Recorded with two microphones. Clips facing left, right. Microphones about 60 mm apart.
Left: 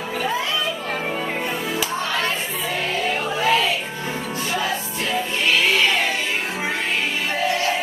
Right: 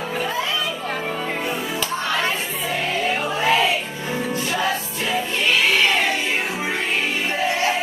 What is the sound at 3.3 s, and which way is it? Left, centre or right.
Music, centre.